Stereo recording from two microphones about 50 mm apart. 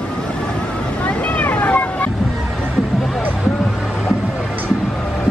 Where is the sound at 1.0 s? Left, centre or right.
Left.